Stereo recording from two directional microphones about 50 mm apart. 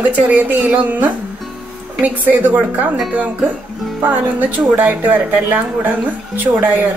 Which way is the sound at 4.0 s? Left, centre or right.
Right.